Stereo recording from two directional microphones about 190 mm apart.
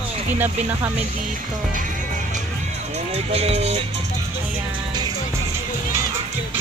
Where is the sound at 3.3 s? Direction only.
35° right (ahead or behind).